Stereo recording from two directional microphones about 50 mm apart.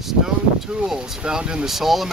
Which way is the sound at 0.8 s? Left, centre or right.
Centre.